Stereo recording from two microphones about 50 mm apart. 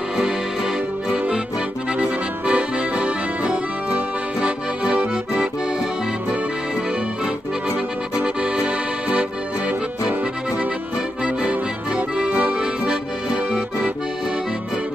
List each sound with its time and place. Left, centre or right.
0.2 s accordion: centre
2.0 s accordion: right
7.7 s accordion: right
11.2 s accordion: right